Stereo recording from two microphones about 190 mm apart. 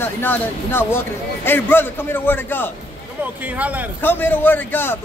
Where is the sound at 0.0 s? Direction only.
10° left (ahead or behind).